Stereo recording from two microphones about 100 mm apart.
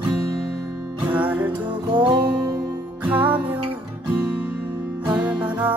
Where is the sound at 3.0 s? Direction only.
15° right (ahead or behind).